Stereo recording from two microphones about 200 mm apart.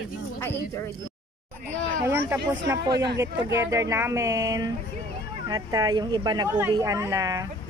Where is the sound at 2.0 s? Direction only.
10° right (ahead or behind).